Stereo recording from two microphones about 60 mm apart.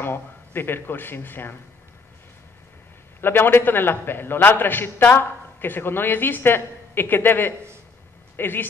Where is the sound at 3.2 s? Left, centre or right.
Left.